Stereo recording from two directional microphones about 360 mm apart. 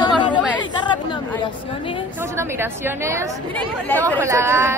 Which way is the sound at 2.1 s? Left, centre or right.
Centre.